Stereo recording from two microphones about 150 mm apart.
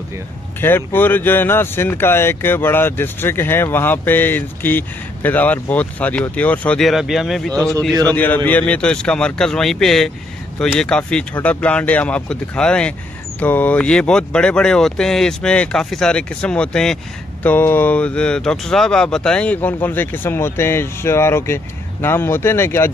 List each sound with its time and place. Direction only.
0.6 s speech: 15° left (ahead or behind)